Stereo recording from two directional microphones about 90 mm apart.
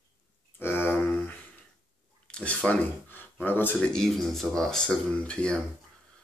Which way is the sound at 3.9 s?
5° left (ahead or behind).